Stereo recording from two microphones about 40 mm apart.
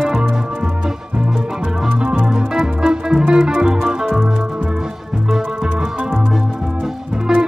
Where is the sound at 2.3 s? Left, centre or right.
Centre.